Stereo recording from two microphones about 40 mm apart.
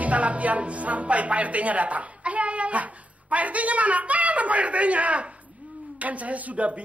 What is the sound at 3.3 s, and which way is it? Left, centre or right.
A woman's voice, right.